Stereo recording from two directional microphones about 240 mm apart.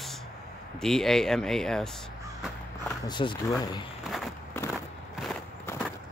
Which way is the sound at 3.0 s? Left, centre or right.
Centre.